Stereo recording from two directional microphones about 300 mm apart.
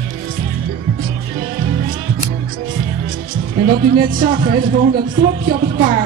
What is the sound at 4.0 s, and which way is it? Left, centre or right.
Speech, right.